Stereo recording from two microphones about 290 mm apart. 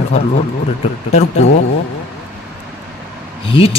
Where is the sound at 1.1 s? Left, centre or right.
Left.